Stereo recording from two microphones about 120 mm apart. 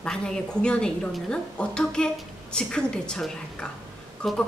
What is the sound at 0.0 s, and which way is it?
A woman's voice, 5° left (ahead or behind).